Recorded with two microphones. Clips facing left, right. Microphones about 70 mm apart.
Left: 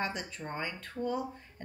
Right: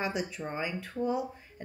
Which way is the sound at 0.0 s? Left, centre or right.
Centre.